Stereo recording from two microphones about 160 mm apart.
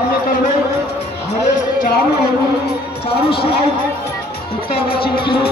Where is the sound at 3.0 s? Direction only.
35° left (ahead or behind).